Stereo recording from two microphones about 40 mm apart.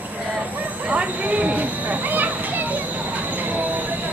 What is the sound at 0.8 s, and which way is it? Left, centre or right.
Children playing, right.